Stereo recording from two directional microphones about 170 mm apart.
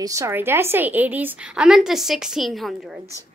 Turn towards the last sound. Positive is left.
turn(degrees=0)  # may be behind; listen again after turning